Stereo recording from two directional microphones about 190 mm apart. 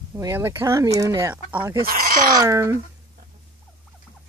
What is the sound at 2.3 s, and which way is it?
Speech, 15° right (ahead or behind).